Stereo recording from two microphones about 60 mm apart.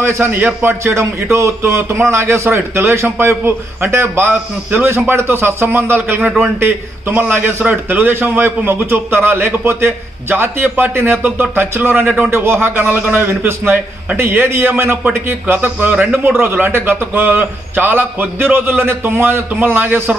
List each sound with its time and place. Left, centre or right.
0.0 s a man's voice: right